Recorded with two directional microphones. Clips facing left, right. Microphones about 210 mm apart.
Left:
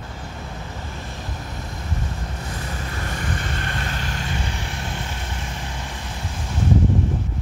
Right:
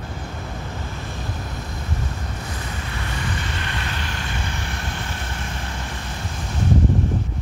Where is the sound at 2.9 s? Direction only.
45° left (ahead or behind).